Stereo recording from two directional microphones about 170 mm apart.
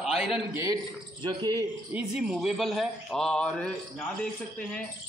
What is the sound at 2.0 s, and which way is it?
A man's voice, 5° right (ahead or behind).